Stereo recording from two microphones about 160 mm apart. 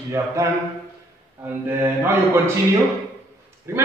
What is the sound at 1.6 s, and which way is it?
Speech, 15° right (ahead or behind).